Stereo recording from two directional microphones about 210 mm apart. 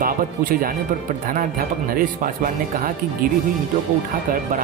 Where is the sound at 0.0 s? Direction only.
45° right (ahead or behind).